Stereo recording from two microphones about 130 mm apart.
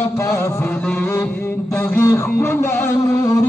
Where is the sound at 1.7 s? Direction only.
15° left (ahead or behind).